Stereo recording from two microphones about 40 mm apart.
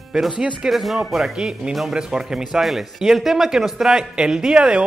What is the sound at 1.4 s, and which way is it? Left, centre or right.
Speech, centre.